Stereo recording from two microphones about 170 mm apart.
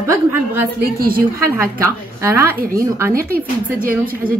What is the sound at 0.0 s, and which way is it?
Speech, 15° right (ahead or behind).